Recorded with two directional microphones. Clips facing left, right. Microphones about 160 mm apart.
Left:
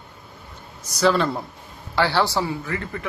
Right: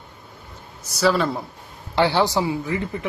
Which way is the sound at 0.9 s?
5° right (ahead or behind).